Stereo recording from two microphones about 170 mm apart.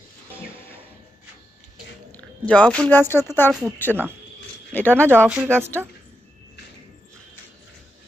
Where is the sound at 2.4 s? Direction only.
10° left (ahead or behind).